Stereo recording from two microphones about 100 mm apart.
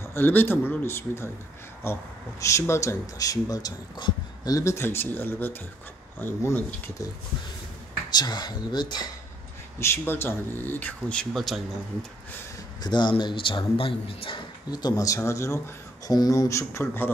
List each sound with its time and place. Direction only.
0.0 s speech: 20° left (ahead or behind)
2.4 s speech: 30° left (ahead or behind)
8.1 s speech: 45° left (ahead or behind)
9.8 s speech: 25° left (ahead or behind)
11.3 s a man's voice: centre (ahead or behind)
12.8 s speech: 50° left (ahead or behind)
14.7 s speech: 40° left (ahead or behind); by 17.1 s 25° left (ahead or behind)